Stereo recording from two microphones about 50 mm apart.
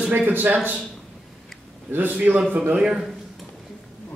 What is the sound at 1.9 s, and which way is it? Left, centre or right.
Speech, right.